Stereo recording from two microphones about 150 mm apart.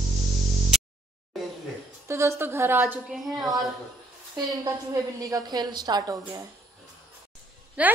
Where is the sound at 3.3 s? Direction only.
Centre (ahead or behind).